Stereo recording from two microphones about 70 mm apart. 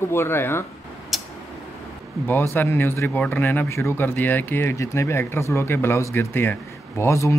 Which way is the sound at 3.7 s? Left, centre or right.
Left.